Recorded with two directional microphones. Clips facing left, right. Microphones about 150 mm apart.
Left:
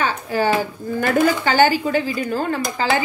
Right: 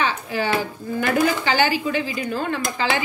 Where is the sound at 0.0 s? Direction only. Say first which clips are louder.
Left 3 dB; 45° left (ahead or behind).